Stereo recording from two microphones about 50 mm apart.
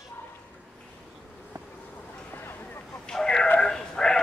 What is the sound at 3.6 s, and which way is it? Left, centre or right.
Sheep, centre.